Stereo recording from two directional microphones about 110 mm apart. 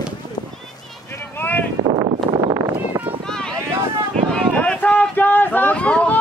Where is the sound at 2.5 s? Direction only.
20° right (ahead or behind).